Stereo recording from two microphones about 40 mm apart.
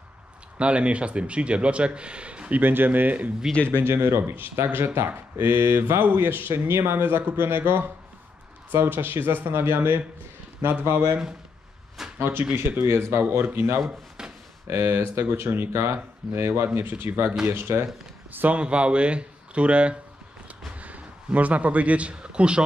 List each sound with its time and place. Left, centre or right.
0.6 s speech: right
2.6 s speech: right
3.7 s speech: right
10.6 s speech: right
12.2 s speech: right
12.5 s speech: right
18.5 s speech: right
20.7 s a sound: right
22.1 s speech: right